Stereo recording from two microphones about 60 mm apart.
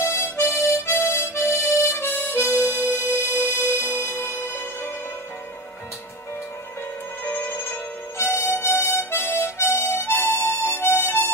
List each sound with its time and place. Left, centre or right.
0.0 s harmonica: left
7.2 s music: left
8.2 s harmonica: left